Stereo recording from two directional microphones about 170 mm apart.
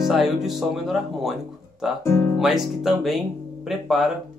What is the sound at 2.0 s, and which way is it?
Speech, 15° left (ahead or behind).